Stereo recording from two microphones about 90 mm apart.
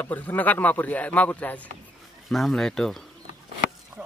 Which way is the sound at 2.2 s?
Centre (ahead or behind).